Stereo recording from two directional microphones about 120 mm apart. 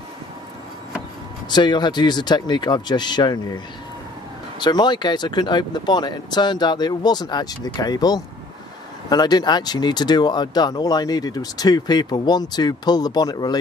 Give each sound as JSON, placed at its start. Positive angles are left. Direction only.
{"t": 1.5, "sound": "speech", "side_deg": 40}